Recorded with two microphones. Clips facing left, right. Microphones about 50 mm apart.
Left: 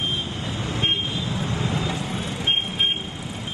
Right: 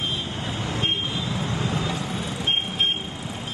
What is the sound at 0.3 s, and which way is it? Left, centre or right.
Vehicle, right.